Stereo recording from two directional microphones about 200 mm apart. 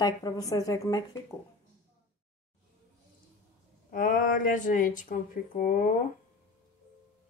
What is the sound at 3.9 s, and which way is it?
Speech, 40° left (ahead or behind).